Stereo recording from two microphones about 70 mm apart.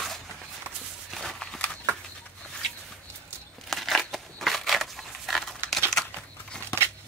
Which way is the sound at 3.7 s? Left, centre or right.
Centre.